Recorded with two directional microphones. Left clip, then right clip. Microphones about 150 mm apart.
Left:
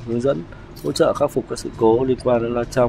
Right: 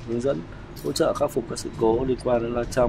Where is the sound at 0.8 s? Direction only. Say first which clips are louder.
Left 5 dB; 40° left (ahead or behind).